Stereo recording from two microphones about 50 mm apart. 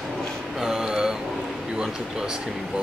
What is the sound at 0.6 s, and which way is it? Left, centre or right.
Speech, centre.